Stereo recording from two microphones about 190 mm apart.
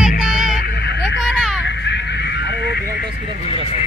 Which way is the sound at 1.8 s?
65° left (ahead or behind).